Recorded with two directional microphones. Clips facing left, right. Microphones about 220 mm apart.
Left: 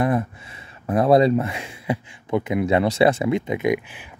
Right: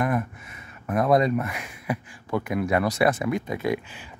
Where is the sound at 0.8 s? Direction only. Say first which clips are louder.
Left 5 dB; 30° left (ahead or behind).